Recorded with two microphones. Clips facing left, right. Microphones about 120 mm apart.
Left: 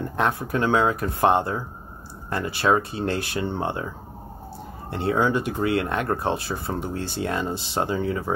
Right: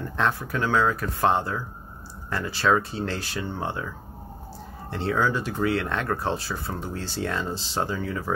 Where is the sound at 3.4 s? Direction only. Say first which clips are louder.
Left 4 dB; 20° left (ahead or behind).